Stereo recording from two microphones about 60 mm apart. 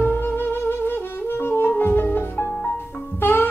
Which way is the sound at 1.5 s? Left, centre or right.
Left.